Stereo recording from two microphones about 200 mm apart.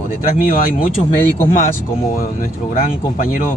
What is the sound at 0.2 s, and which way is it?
Speech, 45° left (ahead or behind).